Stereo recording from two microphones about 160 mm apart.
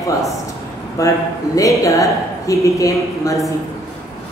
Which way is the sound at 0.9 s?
20° left (ahead or behind).